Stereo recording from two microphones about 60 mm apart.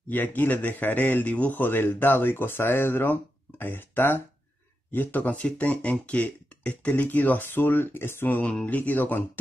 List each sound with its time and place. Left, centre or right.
0.1 s a man's voice: left
8.4 s speech: left